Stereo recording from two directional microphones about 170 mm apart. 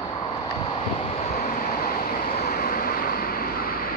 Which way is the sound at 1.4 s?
55° left (ahead or behind).